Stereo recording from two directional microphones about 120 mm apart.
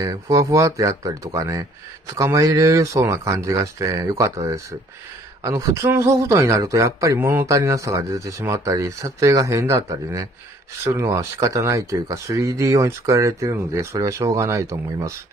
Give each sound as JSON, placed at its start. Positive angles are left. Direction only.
{"t": 0.0, "sound": "speech", "side_deg": -25}